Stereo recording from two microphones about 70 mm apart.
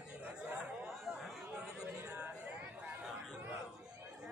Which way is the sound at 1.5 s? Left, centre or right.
Centre.